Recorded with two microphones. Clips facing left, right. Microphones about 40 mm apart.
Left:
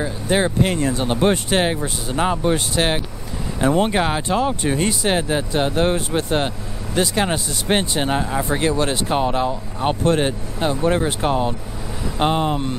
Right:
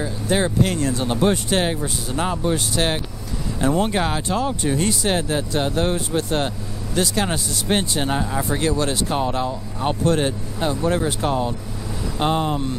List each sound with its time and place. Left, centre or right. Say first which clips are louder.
0.0 s speech: left 2 dB; left